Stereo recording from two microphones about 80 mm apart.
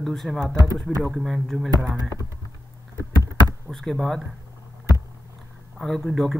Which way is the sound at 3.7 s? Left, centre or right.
Centre.